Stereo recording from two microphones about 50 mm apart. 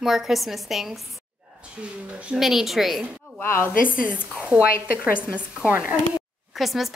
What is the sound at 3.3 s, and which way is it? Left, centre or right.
Speech, left.